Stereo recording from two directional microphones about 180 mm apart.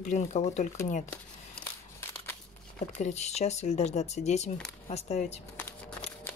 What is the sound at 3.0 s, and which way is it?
Speech, 40° left (ahead or behind).